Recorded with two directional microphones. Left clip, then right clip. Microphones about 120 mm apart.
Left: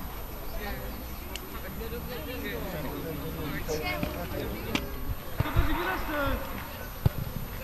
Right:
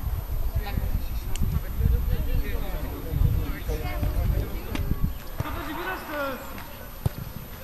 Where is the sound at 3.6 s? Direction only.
20° left (ahead or behind).